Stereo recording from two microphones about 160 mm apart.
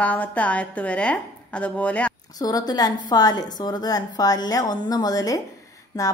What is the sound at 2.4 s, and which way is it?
A woman's voice, 25° left (ahead or behind).